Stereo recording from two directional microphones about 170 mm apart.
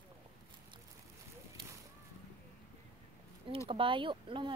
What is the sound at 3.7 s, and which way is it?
Speech, 30° right (ahead or behind).